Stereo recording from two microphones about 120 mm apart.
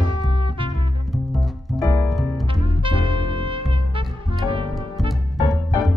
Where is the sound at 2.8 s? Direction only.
45° right (ahead or behind).